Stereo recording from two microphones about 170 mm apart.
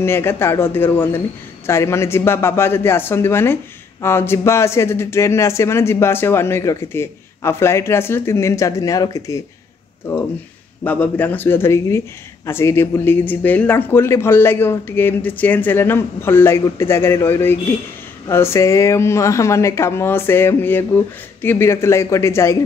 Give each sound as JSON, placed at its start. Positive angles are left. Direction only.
{"t": 0.0, "sound": "speech", "side_deg": 15}
{"t": 10.8, "sound": "speech", "side_deg": 10}